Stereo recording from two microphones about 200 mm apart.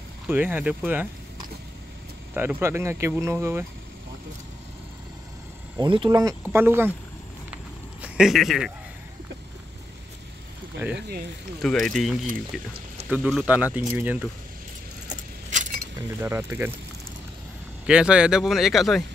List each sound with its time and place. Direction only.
0.3 s speech: 10° right (ahead or behind)
2.3 s speech: 10° right (ahead or behind)
5.8 s speech: 25° right (ahead or behind)
7.5 s a sound: 5° right (ahead or behind)
10.8 s speech: 10° right (ahead or behind)
15.0 s keys jangling: 35° right (ahead or behind)
16.2 s speech: 15° right (ahead or behind)
17.8 s speech: 5° right (ahead or behind)